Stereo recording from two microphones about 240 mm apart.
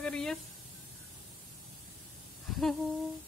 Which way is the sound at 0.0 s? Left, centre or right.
Centre.